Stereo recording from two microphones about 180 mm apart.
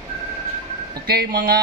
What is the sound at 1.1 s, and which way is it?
Speech, 60° right (ahead or behind).